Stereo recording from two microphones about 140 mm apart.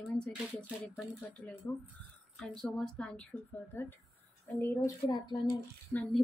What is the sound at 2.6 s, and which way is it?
A woman's voice, 5° left (ahead or behind).